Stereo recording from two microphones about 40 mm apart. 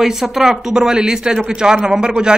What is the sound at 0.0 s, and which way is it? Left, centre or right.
A man's voice, centre.